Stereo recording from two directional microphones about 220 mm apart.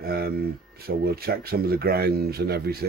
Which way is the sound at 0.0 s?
45° right (ahead or behind).